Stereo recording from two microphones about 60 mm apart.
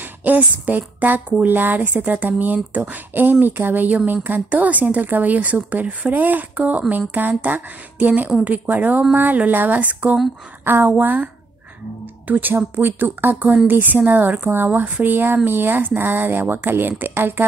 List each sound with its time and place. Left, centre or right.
0.2 s speech: right
10.6 s speech: right
10.9 s speech: right
12.3 s speech: right